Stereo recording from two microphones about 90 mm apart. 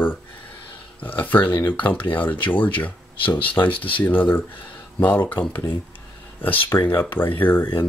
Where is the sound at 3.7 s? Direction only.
75° left (ahead or behind).